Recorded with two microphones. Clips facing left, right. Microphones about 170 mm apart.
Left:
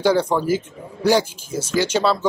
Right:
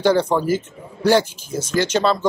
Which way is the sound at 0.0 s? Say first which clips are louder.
Right 1 dB; 10° left (ahead or behind).